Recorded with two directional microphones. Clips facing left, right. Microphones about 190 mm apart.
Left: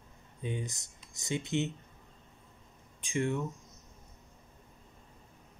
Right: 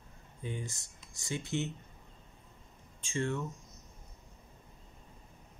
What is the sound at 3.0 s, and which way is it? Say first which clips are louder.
Speech: left 3 dB; 15° left (ahead or behind).